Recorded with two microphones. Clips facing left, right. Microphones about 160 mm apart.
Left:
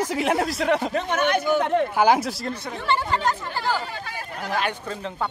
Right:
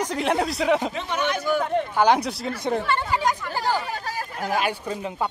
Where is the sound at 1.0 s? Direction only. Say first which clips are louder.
Left 4 dB; 50° left (ahead or behind).